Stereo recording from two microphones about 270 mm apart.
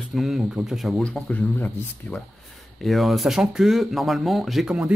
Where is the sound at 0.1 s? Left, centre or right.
Centre.